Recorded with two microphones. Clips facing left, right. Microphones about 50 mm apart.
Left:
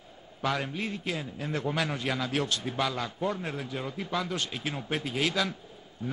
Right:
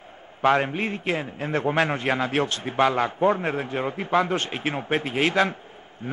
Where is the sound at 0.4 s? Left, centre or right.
Right.